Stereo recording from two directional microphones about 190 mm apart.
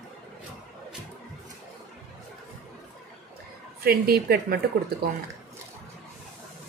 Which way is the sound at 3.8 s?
55° right (ahead or behind).